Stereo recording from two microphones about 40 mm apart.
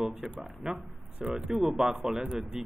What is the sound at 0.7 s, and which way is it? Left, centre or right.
Speech, centre.